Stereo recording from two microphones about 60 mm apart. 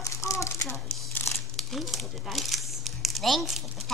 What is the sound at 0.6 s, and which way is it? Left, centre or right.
Speech, left.